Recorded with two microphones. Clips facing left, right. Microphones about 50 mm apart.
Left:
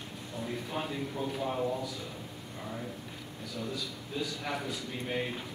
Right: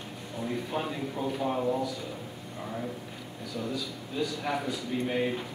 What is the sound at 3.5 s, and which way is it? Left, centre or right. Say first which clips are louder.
A man's voice: right 4 dB; centre.